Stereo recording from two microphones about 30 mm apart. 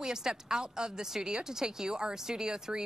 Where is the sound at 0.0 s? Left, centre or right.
Right.